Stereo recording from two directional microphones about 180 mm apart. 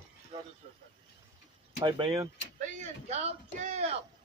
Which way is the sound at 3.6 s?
40° right (ahead or behind).